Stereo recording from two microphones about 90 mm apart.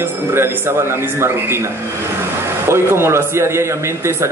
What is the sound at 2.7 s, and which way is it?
A man's voice, 30° right (ahead or behind).